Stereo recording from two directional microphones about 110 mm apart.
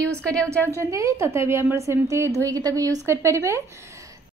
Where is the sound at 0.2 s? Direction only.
10° left (ahead or behind).